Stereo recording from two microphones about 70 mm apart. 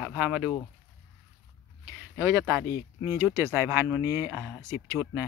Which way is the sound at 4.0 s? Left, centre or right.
Right.